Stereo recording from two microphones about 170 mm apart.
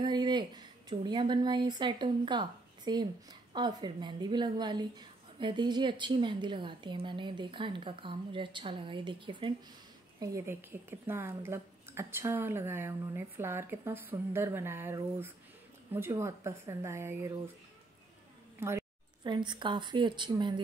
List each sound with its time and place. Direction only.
0.0 s a woman's voice: 25° right (ahead or behind)
10.2 s a woman's voice: 15° right (ahead or behind)
18.6 s a sound: 15° right (ahead or behind)
19.2 s a woman's voice: 25° right (ahead or behind)